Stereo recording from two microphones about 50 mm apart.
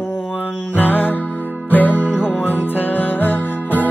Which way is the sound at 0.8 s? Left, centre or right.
Left.